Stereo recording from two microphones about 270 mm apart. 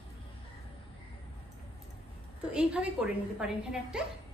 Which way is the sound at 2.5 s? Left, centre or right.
Centre.